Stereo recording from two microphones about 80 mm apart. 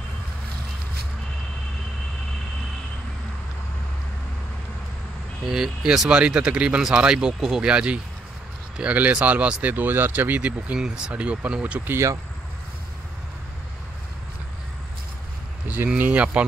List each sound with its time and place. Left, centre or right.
5.5 s speech: centre; by 12.0 s right
15.7 s a sound: right
16.0 s speech: centre